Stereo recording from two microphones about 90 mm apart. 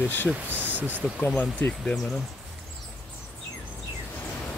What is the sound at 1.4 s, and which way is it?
Speech, 20° left (ahead or behind).